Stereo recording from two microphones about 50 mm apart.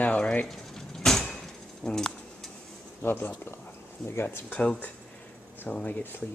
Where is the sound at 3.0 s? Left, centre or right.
Left.